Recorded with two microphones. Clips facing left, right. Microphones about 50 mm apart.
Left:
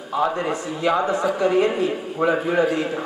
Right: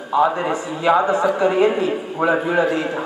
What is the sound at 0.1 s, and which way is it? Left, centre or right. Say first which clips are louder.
A man's voice: right 4 dB; centre.